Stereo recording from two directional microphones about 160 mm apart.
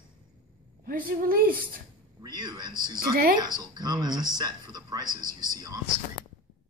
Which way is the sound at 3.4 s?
25° right (ahead or behind).